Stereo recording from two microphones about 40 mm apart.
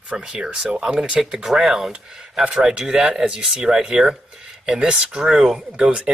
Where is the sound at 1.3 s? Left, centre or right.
Centre.